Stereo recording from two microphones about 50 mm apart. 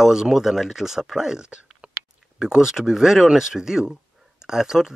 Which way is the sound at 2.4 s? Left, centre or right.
Centre.